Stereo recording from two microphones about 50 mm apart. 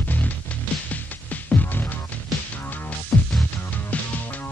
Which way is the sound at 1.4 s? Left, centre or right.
Left.